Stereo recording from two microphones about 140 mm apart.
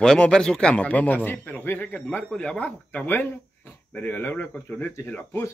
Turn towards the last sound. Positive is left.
turn(degrees=15)  # may be behind; listen again after turning